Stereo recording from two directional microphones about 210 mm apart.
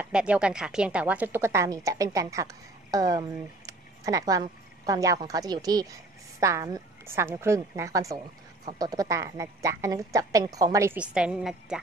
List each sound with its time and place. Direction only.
0.0 s a woman's voice: 5° right (ahead or behind)